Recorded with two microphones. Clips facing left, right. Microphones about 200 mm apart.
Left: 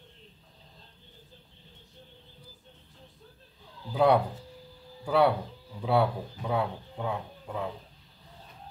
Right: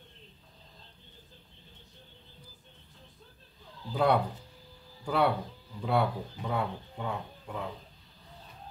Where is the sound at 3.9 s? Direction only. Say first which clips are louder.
Left 3 dB; 5° left (ahead or behind).